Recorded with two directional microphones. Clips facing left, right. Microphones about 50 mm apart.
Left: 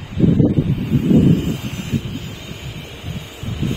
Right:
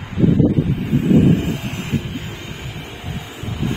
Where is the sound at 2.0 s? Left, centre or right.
Centre.